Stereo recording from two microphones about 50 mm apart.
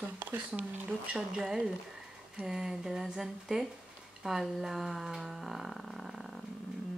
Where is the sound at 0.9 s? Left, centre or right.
Centre.